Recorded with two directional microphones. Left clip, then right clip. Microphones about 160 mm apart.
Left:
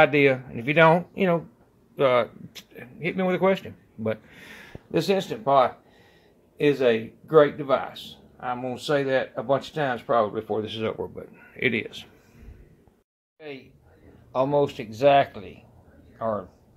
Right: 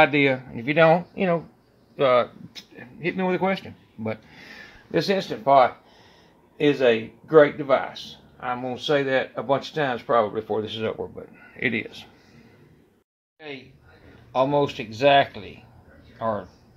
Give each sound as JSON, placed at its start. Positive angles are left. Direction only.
{"t": 0.0, "sound": "speech", "side_deg": 15}
{"t": 14.3, "sound": "speech", "side_deg": 10}